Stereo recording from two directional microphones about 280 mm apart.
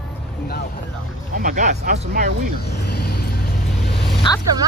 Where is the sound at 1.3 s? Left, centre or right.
Right.